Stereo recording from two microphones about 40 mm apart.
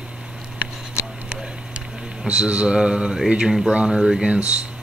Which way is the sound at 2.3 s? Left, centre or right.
Right.